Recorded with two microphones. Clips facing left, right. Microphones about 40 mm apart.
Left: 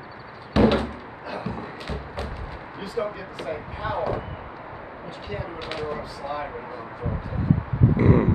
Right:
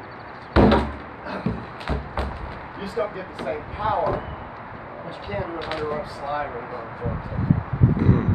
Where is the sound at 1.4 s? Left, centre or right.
Right.